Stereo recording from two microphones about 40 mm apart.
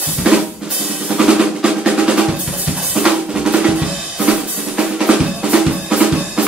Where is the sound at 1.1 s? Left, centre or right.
Right.